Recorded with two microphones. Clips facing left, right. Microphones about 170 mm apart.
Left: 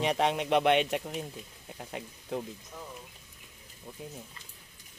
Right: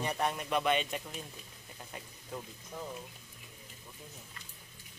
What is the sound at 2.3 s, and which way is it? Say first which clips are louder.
Speech: left 8 dB; 75° left (ahead or behind).